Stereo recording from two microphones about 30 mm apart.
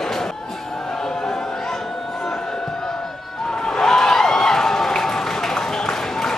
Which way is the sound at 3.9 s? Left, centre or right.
Centre.